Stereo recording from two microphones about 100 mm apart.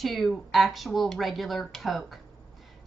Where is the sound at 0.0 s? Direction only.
Centre (ahead or behind).